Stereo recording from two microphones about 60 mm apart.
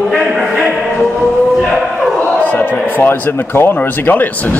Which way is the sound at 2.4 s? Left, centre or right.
Left.